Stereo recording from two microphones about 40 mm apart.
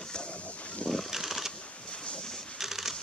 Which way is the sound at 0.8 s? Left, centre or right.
Left.